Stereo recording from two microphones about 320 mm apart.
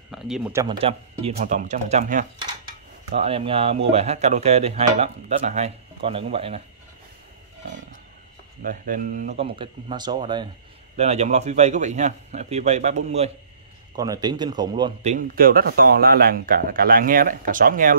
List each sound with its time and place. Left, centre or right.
0.1 s speech: centre
8.6 s speech: right
15.1 s speech: right